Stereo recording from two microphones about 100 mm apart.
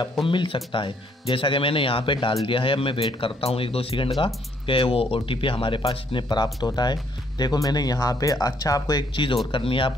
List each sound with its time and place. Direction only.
0.2 s speech: 60° left (ahead or behind); by 9.0 s 35° left (ahead or behind)
9.1 s speech: 55° left (ahead or behind)